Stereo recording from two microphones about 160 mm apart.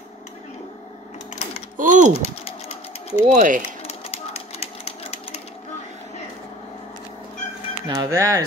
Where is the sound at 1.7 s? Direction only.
55° right (ahead or behind).